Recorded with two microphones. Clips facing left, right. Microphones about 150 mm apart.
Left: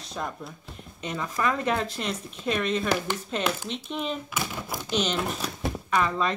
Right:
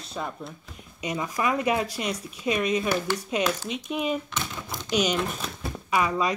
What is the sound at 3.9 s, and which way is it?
Speech, 10° right (ahead or behind).